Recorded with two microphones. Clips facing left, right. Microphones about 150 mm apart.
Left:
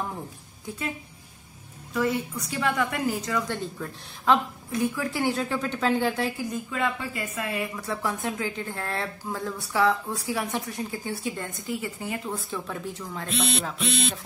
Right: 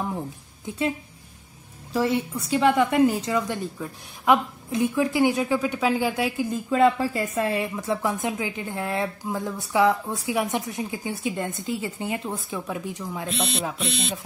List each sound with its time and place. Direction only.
2.0 s a woman's voice: 25° right (ahead or behind); by 6.3 s 10° right (ahead or behind)
6.5 s speech: 35° right (ahead or behind)
7.7 s a woman's voice: 20° right (ahead or behind)